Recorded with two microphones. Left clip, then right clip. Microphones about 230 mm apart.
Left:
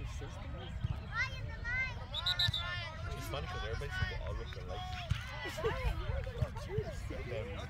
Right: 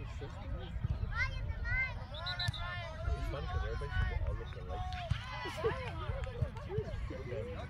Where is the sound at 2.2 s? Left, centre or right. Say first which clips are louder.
Left 6 dB; left.